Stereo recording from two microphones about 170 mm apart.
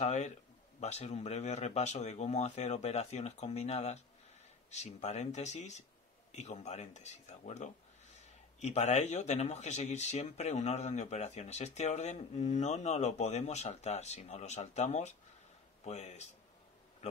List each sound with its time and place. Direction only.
0.0 s speech: 45° left (ahead or behind)